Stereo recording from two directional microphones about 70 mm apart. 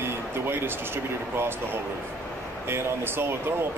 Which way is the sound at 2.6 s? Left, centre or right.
Right.